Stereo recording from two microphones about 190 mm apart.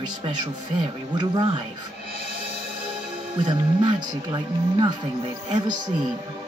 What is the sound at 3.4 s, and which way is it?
Speech, 20° right (ahead or behind).